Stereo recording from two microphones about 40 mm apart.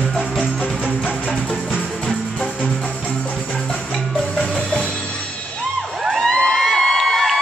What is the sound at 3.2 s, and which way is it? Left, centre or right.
Music, left.